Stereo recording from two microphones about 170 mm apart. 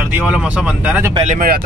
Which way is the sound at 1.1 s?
40° right (ahead or behind).